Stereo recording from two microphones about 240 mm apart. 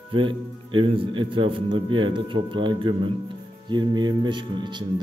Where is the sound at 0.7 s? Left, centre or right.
Right.